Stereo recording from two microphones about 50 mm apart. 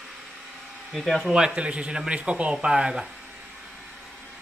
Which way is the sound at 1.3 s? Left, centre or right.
Centre.